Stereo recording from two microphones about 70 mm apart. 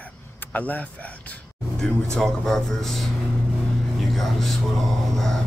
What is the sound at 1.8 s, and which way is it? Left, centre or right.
Speech, centre.